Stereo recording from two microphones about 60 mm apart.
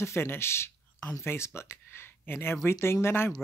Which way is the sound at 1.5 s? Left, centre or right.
Left.